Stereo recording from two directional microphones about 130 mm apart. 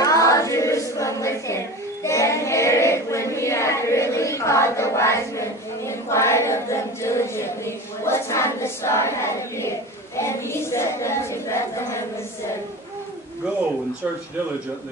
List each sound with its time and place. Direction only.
0.0 s choir: 25° left (ahead or behind)
2.0 s child singing: 20° left (ahead or behind)